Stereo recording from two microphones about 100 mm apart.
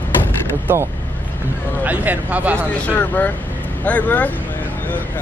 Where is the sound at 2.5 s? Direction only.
15° left (ahead or behind).